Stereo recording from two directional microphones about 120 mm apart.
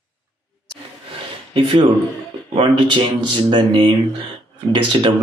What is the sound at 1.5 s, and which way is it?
Speech, 45° right (ahead or behind).